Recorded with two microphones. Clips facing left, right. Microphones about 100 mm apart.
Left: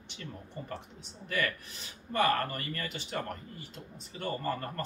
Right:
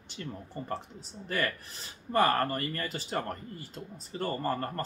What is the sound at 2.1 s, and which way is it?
Speech, 40° right (ahead or behind).